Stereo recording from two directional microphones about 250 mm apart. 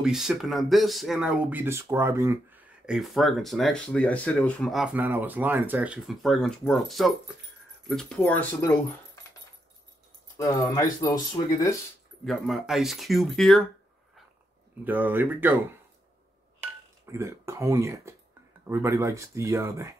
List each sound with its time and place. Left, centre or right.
0.0 s speech: centre
10.3 s speech: centre
12.3 s speech: centre
14.9 s speech: centre
17.0 s speech: centre